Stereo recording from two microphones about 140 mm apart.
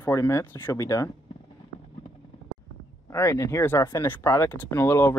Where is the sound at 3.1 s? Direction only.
20° left (ahead or behind).